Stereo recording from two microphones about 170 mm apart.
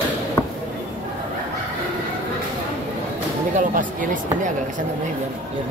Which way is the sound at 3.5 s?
50° right (ahead or behind).